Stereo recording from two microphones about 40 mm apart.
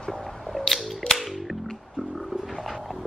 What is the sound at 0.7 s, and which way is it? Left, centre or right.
Music, centre.